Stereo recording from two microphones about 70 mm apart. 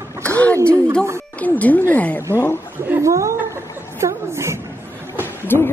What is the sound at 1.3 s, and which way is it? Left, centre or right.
Speech, left.